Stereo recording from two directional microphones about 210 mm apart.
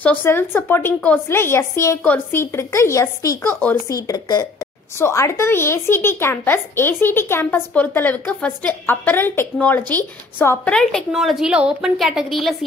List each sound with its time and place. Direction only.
0.0 s speech: 10° left (ahead or behind)